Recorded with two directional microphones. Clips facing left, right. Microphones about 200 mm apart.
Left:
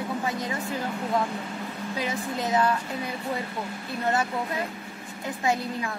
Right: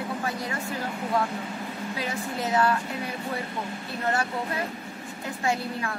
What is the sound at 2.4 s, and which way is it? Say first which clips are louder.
Speech: even; 20° left (ahead or behind).